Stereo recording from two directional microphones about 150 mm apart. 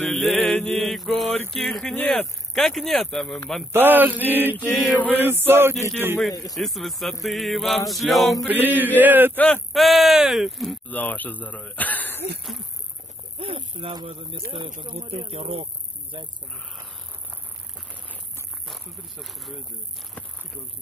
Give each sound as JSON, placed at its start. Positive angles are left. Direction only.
{"t": 0.1, "sound": "mantra", "side_deg": 0}
{"t": 1.5, "sound": "speech", "side_deg": 0}
{"t": 3.7, "sound": "mantra", "side_deg": -15}
{"t": 4.7, "sound": "speech", "side_deg": 0}
{"t": 5.1, "sound": "mantra", "side_deg": -15}
{"t": 6.5, "sound": "speech", "side_deg": 0}
{"t": 8.5, "sound": "mantra", "side_deg": -10}
{"t": 9.3, "sound": "speech", "side_deg": 10}
{"t": 9.7, "sound": "speech", "side_deg": 0}
{"t": 10.9, "sound": "speech", "side_deg": 10}
{"t": 13.4, "sound": "speech", "side_deg": -40}
{"t": 18.7, "sound": "speech", "side_deg": 0}